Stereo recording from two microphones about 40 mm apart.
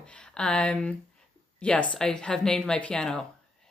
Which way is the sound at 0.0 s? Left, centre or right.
Left.